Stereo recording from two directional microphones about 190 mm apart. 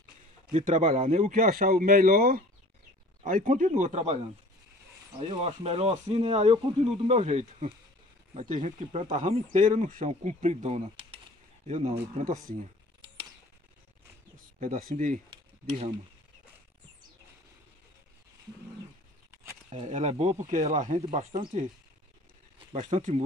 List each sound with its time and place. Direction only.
0.5 s speech: 40° right (ahead or behind)
5.2 s speech: 30° right (ahead or behind)
14.3 s speech: 45° right (ahead or behind)
19.7 s speech: 35° right (ahead or behind)
22.7 s speech: 35° right (ahead or behind)